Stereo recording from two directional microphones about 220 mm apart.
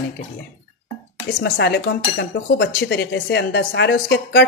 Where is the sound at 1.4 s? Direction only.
50° left (ahead or behind).